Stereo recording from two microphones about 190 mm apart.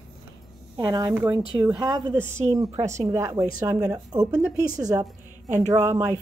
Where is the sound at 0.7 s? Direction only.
20° right (ahead or behind).